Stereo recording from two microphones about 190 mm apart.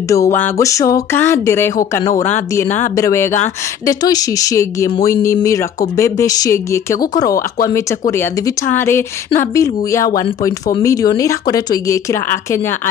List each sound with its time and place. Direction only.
0.1 s speech: 15° left (ahead or behind)
7.0 s speech: 50° left (ahead or behind)
8.1 s speech: 15° left (ahead or behind)